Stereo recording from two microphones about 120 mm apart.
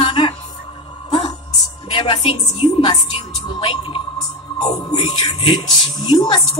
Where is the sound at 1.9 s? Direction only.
45° left (ahead or behind).